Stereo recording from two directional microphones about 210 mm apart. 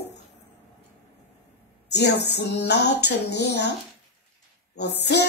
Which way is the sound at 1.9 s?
55° left (ahead or behind).